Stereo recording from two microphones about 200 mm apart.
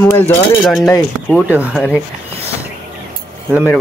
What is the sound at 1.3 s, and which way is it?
Speech, 5° right (ahead or behind).